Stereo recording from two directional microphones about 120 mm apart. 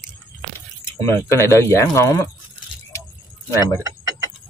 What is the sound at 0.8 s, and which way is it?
Speech, 20° left (ahead or behind).